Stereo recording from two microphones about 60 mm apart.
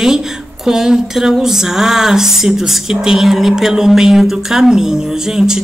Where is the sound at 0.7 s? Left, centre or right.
Centre.